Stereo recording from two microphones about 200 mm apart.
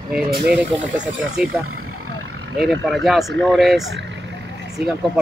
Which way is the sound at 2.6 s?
Centre (ahead or behind).